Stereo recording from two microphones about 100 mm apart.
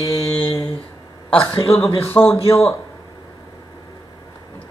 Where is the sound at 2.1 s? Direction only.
30° left (ahead or behind).